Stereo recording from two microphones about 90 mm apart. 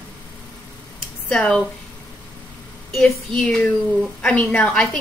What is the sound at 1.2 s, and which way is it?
Speech, 10° left (ahead or behind).